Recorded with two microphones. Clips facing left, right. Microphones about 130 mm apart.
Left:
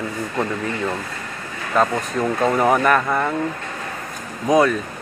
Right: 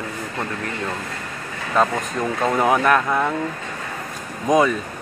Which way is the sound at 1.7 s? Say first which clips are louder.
Left 1 dB; centre (ahead or behind).